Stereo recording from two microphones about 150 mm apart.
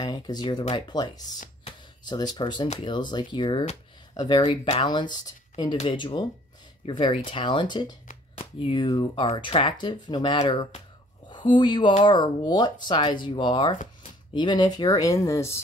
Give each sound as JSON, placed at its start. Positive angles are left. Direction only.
{"t": 0.0, "sound": "speech", "side_deg": 30}